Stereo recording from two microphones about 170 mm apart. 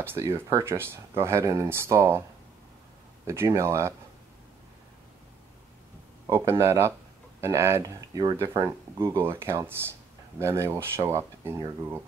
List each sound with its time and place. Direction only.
0.0 s speech: 15° right (ahead or behind)
3.3 s speech: 15° right (ahead or behind)
6.2 s speech: 15° right (ahead or behind)